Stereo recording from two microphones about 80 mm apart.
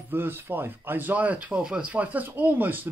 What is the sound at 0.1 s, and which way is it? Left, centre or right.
Speech, right.